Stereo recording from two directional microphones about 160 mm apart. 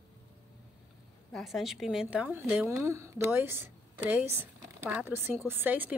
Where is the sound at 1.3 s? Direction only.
Centre (ahead or behind).